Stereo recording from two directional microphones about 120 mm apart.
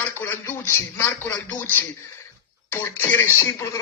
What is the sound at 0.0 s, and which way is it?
Speech, 15° left (ahead or behind).